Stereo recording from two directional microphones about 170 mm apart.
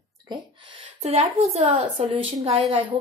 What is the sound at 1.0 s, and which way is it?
Speech, 35° right (ahead or behind).